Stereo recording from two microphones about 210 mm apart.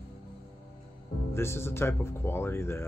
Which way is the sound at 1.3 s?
10° left (ahead or behind).